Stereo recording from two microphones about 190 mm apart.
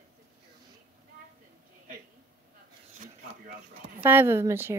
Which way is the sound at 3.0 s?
45° right (ahead or behind).